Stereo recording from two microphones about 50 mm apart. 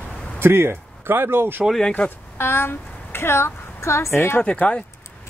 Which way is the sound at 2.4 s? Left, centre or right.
Left.